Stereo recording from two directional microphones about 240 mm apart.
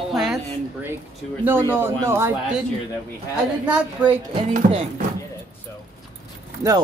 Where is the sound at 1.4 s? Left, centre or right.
Centre.